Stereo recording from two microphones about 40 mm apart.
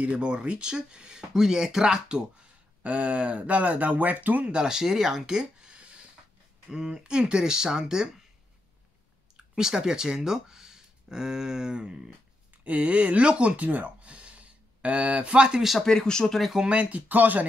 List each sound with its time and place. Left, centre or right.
0.0 s speech: right
2.8 s speech: right
4.5 s speech: centre
5.0 s a sound: centre; by 6.0 s right
6.7 s speech: centre
9.6 s speech: centre
12.6 s speech: right
15.8 s speech: centre
16.6 s speech: right
17.1 s speech: right